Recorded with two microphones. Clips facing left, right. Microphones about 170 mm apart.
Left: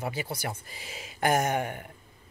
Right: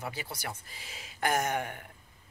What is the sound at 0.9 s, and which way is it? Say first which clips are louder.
Speech: left 5 dB; 10° left (ahead or behind).